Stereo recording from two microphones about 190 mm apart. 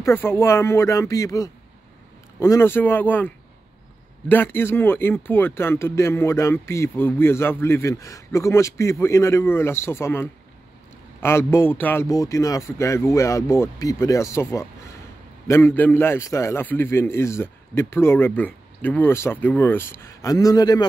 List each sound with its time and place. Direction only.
0.0 s speech: 10° left (ahead or behind)